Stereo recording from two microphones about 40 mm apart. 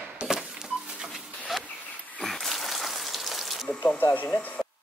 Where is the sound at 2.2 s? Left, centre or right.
Centre.